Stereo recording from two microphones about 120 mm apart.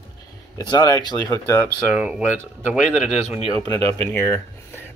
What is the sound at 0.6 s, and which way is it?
Speech, 30° left (ahead or behind).